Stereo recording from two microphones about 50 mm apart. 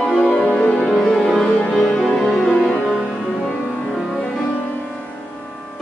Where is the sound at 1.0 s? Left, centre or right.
Centre.